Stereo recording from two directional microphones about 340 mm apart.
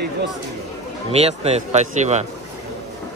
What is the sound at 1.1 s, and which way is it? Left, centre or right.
A man's voice, centre.